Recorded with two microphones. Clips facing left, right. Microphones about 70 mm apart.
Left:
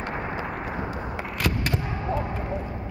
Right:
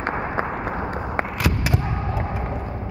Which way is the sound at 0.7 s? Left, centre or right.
Right.